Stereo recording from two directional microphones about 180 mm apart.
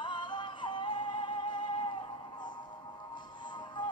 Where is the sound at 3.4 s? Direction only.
25° left (ahead or behind).